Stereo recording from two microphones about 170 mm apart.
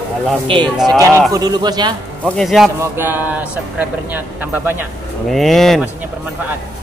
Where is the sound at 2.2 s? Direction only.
Centre (ahead or behind).